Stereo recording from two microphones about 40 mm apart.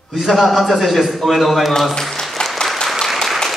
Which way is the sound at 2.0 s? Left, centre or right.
Centre.